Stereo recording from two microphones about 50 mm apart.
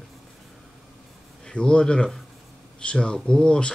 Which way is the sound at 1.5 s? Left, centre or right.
Centre.